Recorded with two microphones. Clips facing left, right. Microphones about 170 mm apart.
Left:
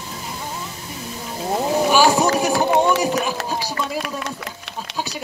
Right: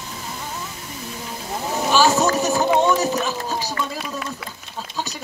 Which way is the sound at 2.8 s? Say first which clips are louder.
Left 1 dB; 10° left (ahead or behind).